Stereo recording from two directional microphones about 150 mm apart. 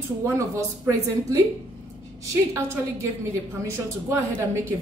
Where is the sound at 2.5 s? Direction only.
15° right (ahead or behind).